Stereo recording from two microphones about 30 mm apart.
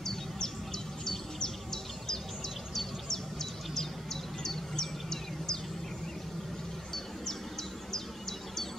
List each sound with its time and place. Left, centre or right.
0.0 s a sound: centre
1.0 s bird vocalization: centre
7.9 s insect: centre